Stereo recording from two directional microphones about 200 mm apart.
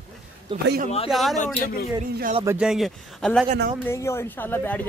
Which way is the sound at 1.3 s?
40° left (ahead or behind).